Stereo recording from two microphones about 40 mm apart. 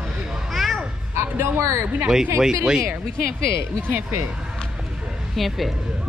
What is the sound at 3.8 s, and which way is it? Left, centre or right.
Speech, right.